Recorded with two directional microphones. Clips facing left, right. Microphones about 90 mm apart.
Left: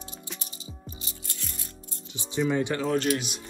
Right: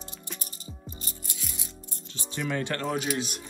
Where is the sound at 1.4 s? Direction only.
5° right (ahead or behind).